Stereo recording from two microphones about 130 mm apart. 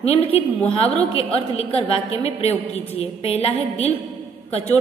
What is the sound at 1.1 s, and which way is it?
A woman's voice, 50° left (ahead or behind).